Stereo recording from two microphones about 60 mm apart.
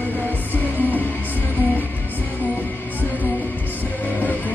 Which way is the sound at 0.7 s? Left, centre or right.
Left.